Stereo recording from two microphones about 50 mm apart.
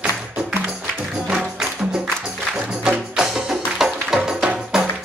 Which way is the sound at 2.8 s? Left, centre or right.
Centre.